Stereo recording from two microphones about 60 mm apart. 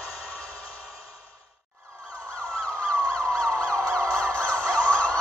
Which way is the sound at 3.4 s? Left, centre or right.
Centre.